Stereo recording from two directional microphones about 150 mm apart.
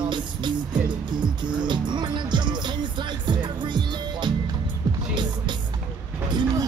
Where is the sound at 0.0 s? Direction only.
30° right (ahead or behind).